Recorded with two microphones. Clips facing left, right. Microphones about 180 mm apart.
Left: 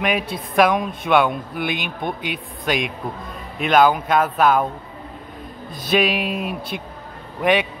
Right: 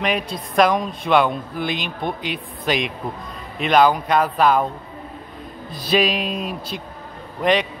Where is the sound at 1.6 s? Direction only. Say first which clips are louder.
Even; 55° left (ahead or behind).